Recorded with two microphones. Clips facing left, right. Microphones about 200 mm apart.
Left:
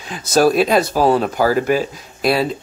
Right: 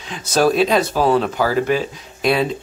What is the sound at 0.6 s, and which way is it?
Speech, 40° left (ahead or behind).